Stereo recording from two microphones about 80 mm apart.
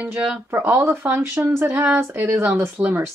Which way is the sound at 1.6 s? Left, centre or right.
Right.